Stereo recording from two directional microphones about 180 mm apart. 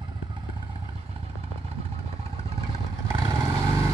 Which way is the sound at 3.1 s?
20° right (ahead or behind).